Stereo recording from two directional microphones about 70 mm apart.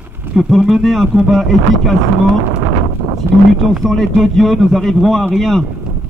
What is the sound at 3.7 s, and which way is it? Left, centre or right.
Speech, centre.